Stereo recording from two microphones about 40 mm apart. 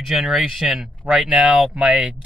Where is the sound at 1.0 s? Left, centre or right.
Right.